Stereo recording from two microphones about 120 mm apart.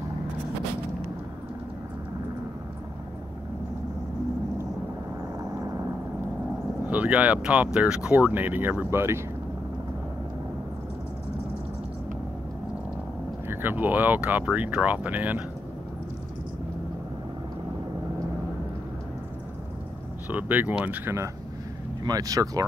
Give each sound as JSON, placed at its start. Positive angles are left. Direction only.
{"t": 6.9, "sound": "speech", "side_deg": -10}
{"t": 13.5, "sound": "speech", "side_deg": -15}
{"t": 20.2, "sound": "speech", "side_deg": -15}
{"t": 22.0, "sound": "speech", "side_deg": -30}